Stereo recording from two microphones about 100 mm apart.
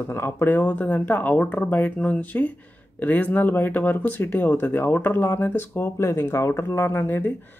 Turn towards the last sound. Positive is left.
turn(degrees=20)  # may be behind; listen again after turning